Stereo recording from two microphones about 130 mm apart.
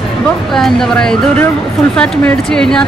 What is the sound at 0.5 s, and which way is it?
Speech, 5° left (ahead or behind).